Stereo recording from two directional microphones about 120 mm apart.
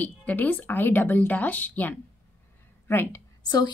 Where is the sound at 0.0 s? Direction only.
15° left (ahead or behind).